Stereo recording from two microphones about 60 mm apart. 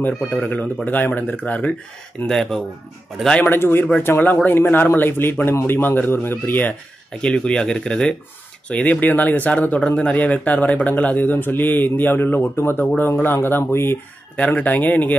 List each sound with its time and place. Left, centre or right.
0.3 s speech: left
2.2 s speech: centre
3.4 s a man's voice: left
7.2 s speech: centre
8.8 s a man's voice: left
12.8 s a man's voice: left
14.3 s speech: left